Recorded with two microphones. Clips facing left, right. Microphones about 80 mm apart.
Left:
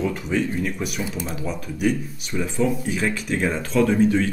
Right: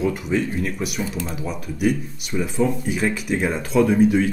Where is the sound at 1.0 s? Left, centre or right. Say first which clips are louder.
Right 1 dB; centre.